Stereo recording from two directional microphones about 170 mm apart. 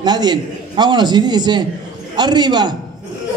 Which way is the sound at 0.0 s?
25° right (ahead or behind).